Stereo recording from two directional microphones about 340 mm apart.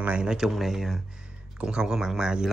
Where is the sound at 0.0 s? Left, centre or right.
Centre.